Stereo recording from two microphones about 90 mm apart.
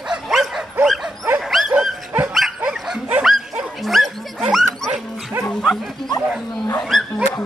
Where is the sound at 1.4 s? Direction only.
Centre (ahead or behind).